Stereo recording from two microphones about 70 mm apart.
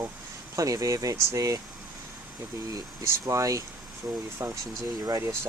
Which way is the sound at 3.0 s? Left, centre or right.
Right.